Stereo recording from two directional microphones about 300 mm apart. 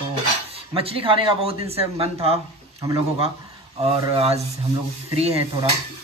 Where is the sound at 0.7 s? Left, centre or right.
Centre.